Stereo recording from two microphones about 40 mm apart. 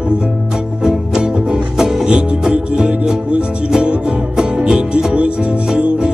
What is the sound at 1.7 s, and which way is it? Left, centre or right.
Music, centre.